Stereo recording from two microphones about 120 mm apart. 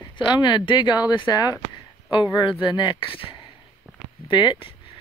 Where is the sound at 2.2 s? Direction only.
5° right (ahead or behind).